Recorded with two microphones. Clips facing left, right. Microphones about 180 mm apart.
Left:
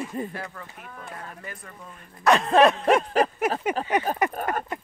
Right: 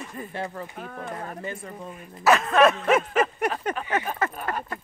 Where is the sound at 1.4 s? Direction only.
25° right (ahead or behind).